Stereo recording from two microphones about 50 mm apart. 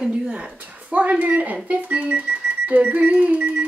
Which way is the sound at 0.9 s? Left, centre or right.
Right.